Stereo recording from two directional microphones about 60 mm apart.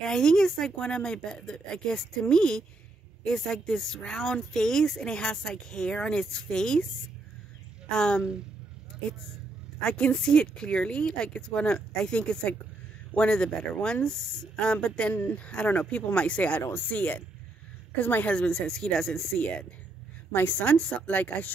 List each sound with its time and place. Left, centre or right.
0.0 s speech: centre
7.9 s speech: centre
9.8 s a woman's voice: centre; by 18.3 s left
18.3 s speech: centre
20.3 s speech: left